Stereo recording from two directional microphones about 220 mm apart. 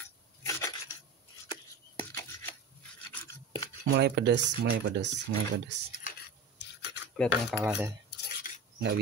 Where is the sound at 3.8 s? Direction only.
50° right (ahead or behind).